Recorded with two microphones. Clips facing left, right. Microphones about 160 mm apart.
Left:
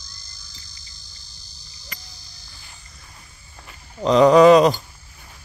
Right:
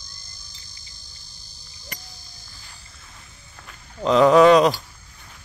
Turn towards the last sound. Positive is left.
turn(degrees=0)  # may be behind; listen again after turning